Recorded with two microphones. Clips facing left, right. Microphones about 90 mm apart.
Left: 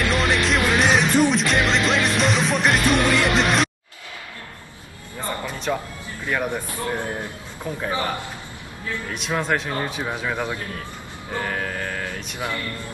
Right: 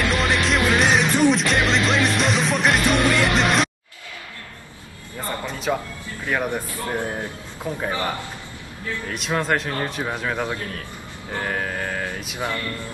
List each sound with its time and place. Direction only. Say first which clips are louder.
0.0 s music: even; centre (ahead or behind)
5.7 s speech: right 2 dB; 5° right (ahead or behind)
7.7 s speech: right 1 dB; centre (ahead or behind)
9.1 s speech: right 1 dB; centre (ahead or behind)
11.3 s a sound: right 1 dB; 5° right (ahead or behind)
12.4 s speech: right 2 dB; 20° right (ahead or behind)